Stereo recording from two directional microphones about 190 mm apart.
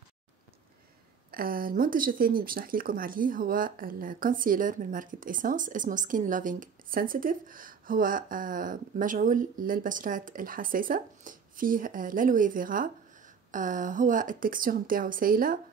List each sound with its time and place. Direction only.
1.3 s speech: 50° right (ahead or behind)